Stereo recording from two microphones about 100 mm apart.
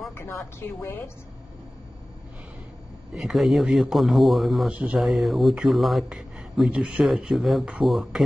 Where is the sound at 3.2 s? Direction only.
Centre (ahead or behind).